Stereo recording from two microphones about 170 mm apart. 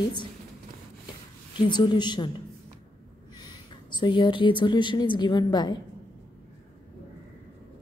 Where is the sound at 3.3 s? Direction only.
25° left (ahead or behind).